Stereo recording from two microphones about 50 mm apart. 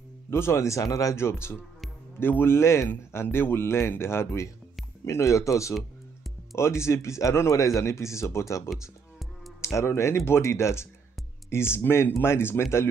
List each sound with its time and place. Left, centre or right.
0.3 s speech: left
3.1 s speech: left
5.0 s speech: left
6.5 s speech: left
11.7 s speech: left